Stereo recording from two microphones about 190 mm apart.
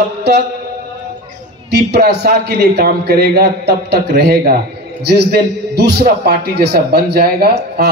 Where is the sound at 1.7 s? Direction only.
60° right (ahead or behind).